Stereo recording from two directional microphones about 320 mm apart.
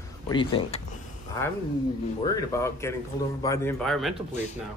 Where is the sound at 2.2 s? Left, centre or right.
Centre.